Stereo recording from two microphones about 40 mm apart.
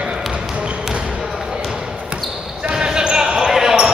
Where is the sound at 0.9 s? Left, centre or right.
Right.